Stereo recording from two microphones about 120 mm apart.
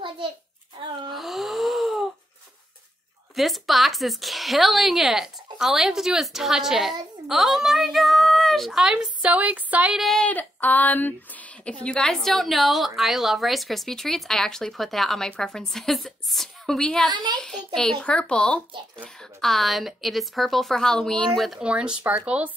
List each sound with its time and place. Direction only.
1.1 s wail: centre (ahead or behind)
3.3 s speech: centre (ahead or behind)
9.9 s speech: centre (ahead or behind)
10.2 s a sound: 15° left (ahead or behind)
11.8 s speech: 5° left (ahead or behind)
17.1 s a woman's voice: 40° right (ahead or behind)
17.4 s a sound: 5° left (ahead or behind)
18.9 s speech: centre (ahead or behind)